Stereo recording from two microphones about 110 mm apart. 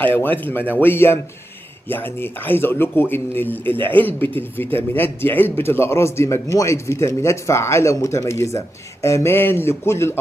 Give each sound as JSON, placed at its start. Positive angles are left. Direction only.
{"t": 0.0, "sound": "a man's voice", "side_deg": 15}